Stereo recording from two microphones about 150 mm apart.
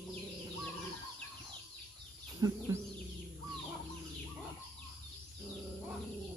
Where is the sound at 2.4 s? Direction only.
25° right (ahead or behind).